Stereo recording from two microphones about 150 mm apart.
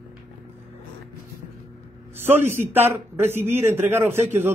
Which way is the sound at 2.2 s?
15° right (ahead or behind).